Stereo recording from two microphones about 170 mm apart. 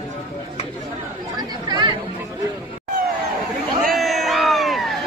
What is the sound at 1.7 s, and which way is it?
Chatter, 25° right (ahead or behind).